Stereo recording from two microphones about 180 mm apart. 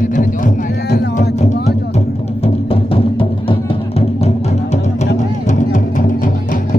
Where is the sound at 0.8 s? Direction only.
65° left (ahead or behind).